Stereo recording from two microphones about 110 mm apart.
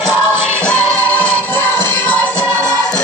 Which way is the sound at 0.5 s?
15° left (ahead or behind).